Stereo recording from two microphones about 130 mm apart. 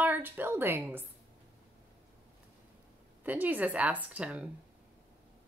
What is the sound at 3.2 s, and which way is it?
Speech, 15° right (ahead or behind).